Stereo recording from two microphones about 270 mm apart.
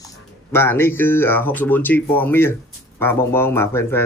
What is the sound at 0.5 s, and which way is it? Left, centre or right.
Speech, centre.